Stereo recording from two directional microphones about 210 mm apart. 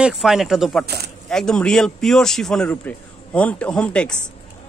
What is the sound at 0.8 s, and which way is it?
Speech, 50° right (ahead or behind).